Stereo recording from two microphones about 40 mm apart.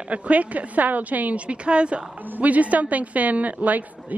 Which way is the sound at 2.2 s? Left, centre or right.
Right.